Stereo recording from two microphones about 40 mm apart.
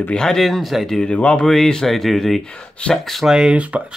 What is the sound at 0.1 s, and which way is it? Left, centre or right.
Speech, centre.